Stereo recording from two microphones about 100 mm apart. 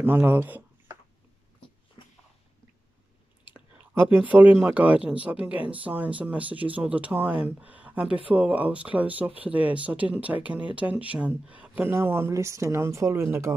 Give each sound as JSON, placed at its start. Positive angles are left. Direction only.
{"t": 0.0, "sound": "speech", "side_deg": -20}
{"t": 3.4, "sound": "speech", "side_deg": -20}